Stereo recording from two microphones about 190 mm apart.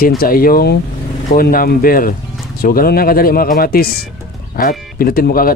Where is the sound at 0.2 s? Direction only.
50° left (ahead or behind).